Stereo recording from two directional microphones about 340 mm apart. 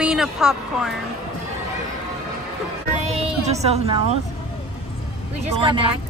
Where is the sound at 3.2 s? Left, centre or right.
Centre.